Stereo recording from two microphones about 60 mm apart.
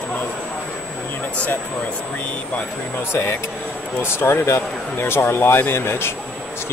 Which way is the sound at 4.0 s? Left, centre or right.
Left.